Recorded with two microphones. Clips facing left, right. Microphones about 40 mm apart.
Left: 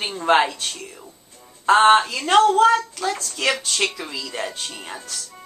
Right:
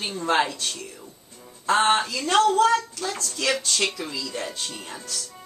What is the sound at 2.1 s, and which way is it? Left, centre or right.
Speech, left.